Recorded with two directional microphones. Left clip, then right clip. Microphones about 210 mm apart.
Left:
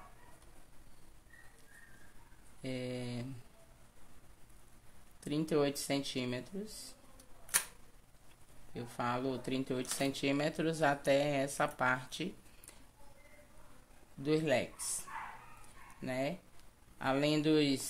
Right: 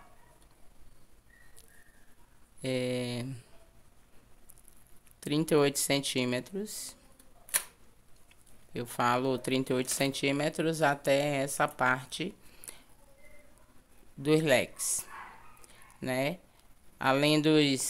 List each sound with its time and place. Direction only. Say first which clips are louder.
2.6 s speech: right 9 dB; 30° right (ahead or behind)
5.2 s speech: right 7 dB; 30° right (ahead or behind)
8.7 s speech: right 9 dB; 35° right (ahead or behind)
14.2 s speech: right 7 dB; 30° right (ahead or behind)